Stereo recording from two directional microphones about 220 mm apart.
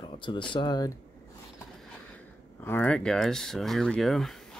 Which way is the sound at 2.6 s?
10° left (ahead or behind).